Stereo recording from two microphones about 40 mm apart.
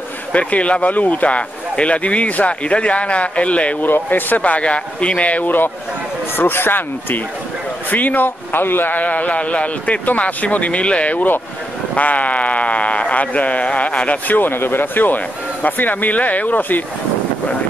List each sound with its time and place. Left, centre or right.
0.3 s speech: left
3.8 s speech: left
4.4 s speech: left
6.3 s speech: left
7.9 s speech: left
8.5 s speech: left
8.9 s speech: left